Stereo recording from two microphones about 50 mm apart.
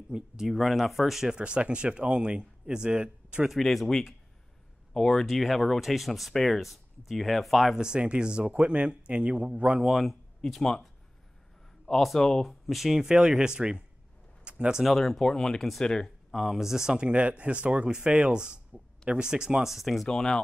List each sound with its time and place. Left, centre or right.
0.1 s speech: right
0.5 s speech: centre
1.4 s speech: right
3.6 s speech: centre
7.7 s speech: centre
9.8 s speech: centre
11.8 s a man's voice: centre
12.4 s speech: centre
14.4 s a sound: right
15.0 s speech: centre
16.3 s speech: centre
20.1 s speech: centre